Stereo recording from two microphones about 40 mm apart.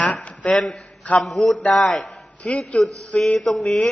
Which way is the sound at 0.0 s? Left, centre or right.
Left.